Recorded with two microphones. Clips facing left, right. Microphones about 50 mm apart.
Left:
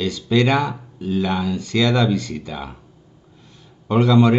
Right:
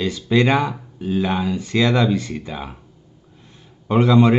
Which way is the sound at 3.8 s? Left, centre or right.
Centre.